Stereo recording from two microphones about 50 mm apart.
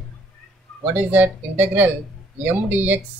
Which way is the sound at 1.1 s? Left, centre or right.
Right.